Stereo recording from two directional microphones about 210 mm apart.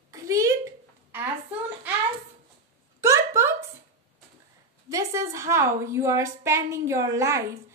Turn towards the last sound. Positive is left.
turn(degrees=-15)  # may be behind; listen again after turning